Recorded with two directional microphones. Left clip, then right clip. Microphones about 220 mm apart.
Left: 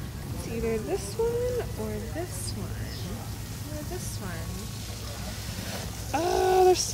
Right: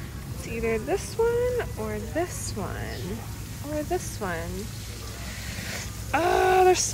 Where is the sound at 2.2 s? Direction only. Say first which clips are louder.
Right 10 dB; 5° left (ahead or behind).